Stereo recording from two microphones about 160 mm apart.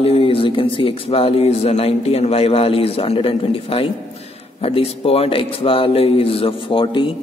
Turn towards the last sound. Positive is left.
turn(degrees=30)  # may be behind; listen again after turning